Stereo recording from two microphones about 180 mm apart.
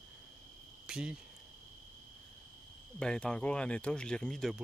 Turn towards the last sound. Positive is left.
turn(degrees=5)  # may be behind; listen again after turning